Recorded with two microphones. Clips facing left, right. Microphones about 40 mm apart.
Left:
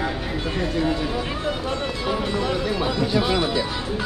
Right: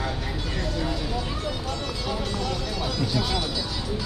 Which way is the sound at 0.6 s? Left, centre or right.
Left.